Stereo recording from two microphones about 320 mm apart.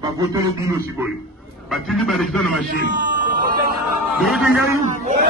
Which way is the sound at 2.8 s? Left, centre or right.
Right.